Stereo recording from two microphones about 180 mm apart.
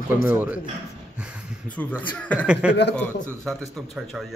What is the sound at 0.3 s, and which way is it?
Speech, 10° right (ahead or behind).